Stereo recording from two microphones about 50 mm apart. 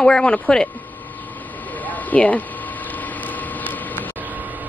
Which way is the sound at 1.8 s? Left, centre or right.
Left.